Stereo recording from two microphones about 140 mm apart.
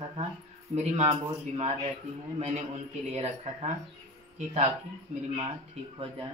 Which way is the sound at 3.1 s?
45° right (ahead or behind).